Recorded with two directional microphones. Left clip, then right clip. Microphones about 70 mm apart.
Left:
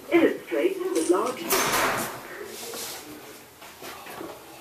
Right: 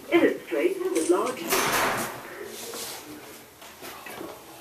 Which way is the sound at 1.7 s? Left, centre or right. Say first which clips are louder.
Left 1 dB; centre.